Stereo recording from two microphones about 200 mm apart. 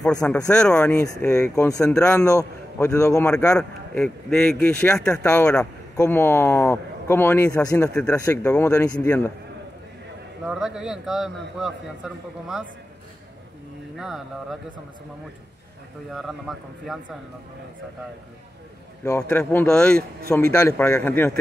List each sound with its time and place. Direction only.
0.0 s speech: 5° left (ahead or behind)
10.4 s speech: 5° right (ahead or behind)
13.9 s speech: centre (ahead or behind)
16.1 s speech: centre (ahead or behind)
19.0 s speech: 10° left (ahead or behind)